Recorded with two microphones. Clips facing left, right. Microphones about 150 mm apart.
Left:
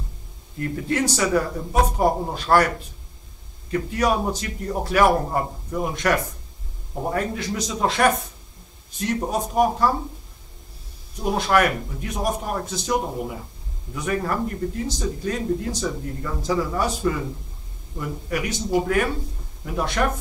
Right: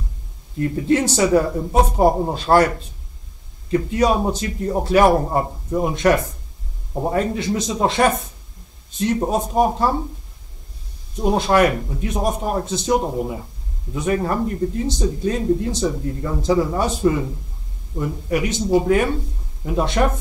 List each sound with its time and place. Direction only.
0.6 s speech: 25° right (ahead or behind)
3.9 s speech: 25° right (ahead or behind)
11.3 s speech: 25° right (ahead or behind)